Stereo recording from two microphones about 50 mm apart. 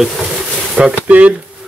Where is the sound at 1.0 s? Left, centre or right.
Right.